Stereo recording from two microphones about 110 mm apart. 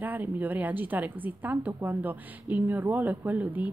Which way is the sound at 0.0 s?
15° right (ahead or behind).